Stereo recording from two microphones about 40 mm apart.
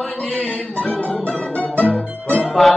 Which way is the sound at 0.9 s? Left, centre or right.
Left.